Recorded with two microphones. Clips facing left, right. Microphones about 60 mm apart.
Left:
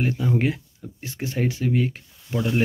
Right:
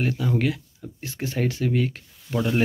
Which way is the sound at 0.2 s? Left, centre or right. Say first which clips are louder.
Left 1 dB; centre.